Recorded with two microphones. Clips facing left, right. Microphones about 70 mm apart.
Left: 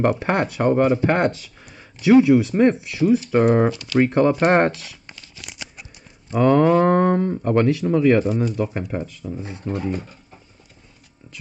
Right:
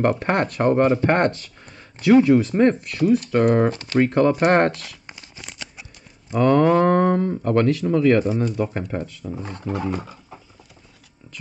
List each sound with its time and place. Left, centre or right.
0.0 s speech: centre
3.7 s speech: right
4.0 s speech: centre
5.0 s a sound: right
5.5 s a sound: centre
6.4 s speech: centre
6.8 s a sound: centre
7.4 s speech: centre
8.4 s speech: centre
9.3 s speech: right